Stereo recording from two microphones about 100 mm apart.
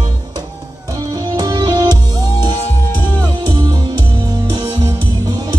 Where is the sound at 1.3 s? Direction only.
45° right (ahead or behind).